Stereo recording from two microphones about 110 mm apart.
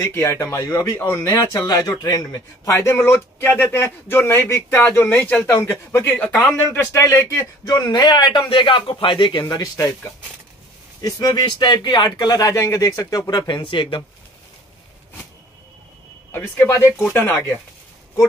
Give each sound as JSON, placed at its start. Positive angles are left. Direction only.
{"t": 0.0, "sound": "speech", "side_deg": 25}
{"t": 1.2, "sound": "a man's voice", "side_deg": 35}
{"t": 7.6, "sound": "a man's voice", "side_deg": 35}
{"t": 9.4, "sound": "a man's voice", "side_deg": 30}
{"t": 11.0, "sound": "a man's voice", "side_deg": 35}
{"t": 16.3, "sound": "speech", "side_deg": 20}